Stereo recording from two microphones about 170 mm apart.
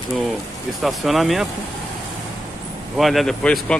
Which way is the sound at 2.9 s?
Centre (ahead or behind).